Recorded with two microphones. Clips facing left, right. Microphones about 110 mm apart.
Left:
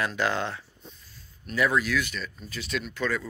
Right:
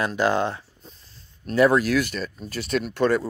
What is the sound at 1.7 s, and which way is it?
Speech, 50° right (ahead or behind).